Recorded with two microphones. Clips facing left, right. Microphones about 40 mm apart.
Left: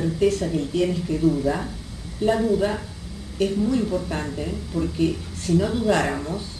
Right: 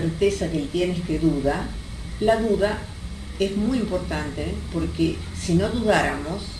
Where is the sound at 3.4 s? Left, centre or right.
Right.